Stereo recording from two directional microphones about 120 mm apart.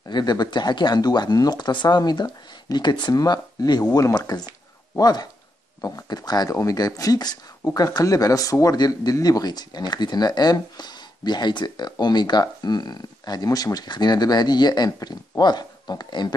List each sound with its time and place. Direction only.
0.1 s speech: 35° left (ahead or behind)